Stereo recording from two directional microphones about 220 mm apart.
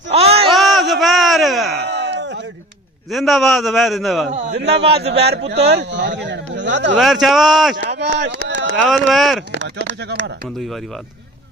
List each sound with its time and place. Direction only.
0.1 s a sound: 25° right (ahead or behind)
0.5 s music: centre (ahead or behind)
1.9 s a sound: 55° right (ahead or behind)
3.1 s a man's voice: centre (ahead or behind)
4.3 s a man's voice: 30° right (ahead or behind)
4.6 s speech: 50° right (ahead or behind)
7.0 s a man's voice: centre (ahead or behind)
7.7 s speech: 50° right (ahead or behind)
8.2 s a sound: 55° right (ahead or behind)
8.7 s a man's voice: centre (ahead or behind)
9.6 s speech: 55° right (ahead or behind)